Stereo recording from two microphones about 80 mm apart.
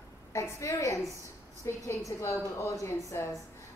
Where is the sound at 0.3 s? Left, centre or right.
Left.